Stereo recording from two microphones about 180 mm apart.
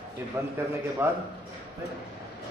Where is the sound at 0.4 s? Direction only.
15° right (ahead or behind).